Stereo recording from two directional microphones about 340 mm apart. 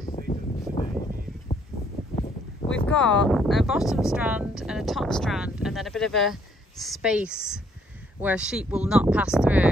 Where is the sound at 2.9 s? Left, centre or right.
Centre.